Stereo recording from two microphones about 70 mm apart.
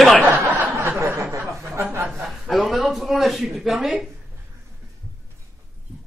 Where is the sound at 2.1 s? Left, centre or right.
Centre.